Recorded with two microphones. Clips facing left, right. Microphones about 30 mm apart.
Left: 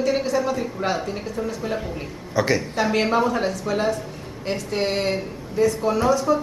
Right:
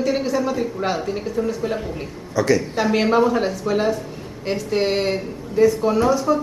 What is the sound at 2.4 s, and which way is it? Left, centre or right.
Speech, left.